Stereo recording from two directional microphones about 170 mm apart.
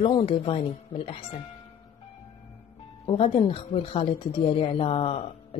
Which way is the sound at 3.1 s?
35° left (ahead or behind).